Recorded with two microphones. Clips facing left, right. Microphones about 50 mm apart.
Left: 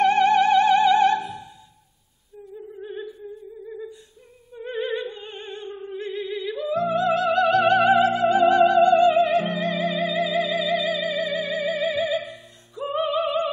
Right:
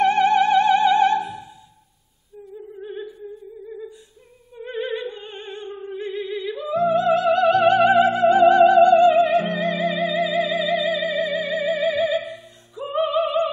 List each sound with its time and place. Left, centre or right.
0.0 s music: centre
2.3 s a sound: centre
4.6 s opera: centre
6.0 s music: centre